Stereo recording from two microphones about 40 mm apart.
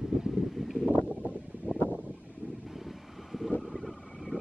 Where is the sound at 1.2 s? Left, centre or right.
Right.